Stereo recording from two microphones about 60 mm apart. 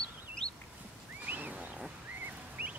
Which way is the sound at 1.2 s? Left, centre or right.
Right.